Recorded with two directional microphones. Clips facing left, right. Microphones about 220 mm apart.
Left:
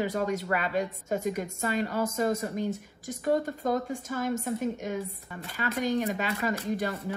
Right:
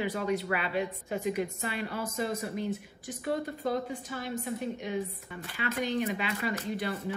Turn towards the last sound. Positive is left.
turn(degrees=45)  # may be behind; listen again after turning